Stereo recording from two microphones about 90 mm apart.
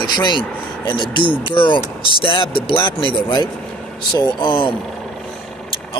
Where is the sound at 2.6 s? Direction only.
65° left (ahead or behind).